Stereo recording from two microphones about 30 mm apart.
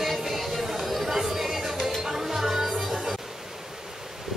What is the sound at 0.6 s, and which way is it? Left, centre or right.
Chatter, centre.